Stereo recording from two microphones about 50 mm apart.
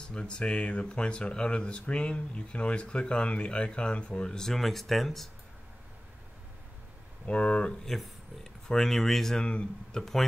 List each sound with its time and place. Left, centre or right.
0.0 s speech: centre
7.2 s speech: left
7.8 s speech: centre
9.4 s speech: centre